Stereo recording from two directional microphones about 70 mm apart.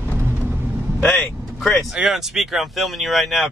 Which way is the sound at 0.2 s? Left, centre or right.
Right.